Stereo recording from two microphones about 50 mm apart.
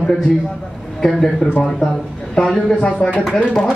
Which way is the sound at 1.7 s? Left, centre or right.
Centre.